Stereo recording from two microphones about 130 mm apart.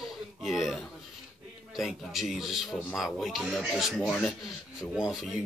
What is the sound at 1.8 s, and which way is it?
Speech, centre (ahead or behind).